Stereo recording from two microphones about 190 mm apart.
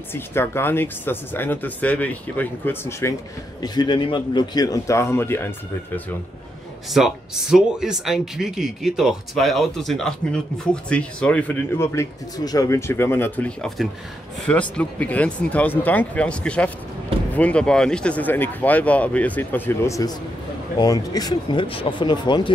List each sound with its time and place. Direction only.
0.1 s speech: 10° left (ahead or behind)
6.9 s speech: centre (ahead or behind); by 22.5 s 25° left (ahead or behind)